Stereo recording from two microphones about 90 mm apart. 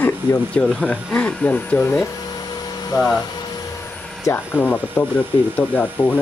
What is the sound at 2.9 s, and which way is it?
Speech, 40° left (ahead or behind).